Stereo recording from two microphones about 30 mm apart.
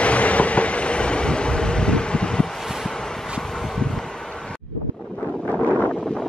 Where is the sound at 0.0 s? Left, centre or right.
Left.